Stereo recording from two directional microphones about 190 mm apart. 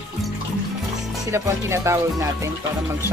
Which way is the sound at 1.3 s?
15° right (ahead or behind).